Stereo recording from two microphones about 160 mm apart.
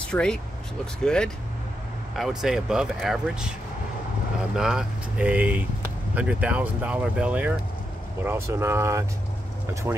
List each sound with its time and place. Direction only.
0.0 s speech: 5° left (ahead or behind)
4.6 s speech: 5° right (ahead or behind)